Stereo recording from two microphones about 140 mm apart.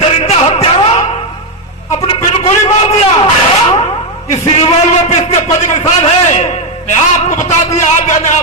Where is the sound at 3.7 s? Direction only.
55° left (ahead or behind).